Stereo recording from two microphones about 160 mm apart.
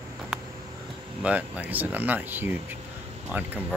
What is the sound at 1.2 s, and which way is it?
Speech, 10° right (ahead or behind).